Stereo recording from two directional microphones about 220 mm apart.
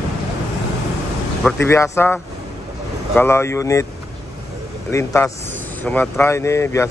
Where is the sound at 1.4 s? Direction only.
10° left (ahead or behind).